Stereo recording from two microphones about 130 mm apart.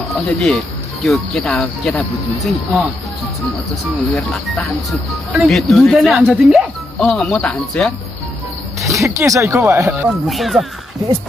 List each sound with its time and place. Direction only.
0.3 s speech: 5° left (ahead or behind)
4.1 s speech: centre (ahead or behind)
8.8 s speech: 25° right (ahead or behind)
10.2 s speech: centre (ahead or behind)